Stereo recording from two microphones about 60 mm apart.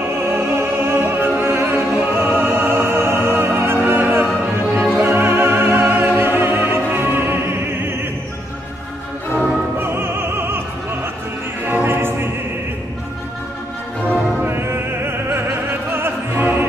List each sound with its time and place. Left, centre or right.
0.3 s opera: right
9.8 s opera: right
11.6 s opera: right
14.4 s opera: right
15.9 s opera: right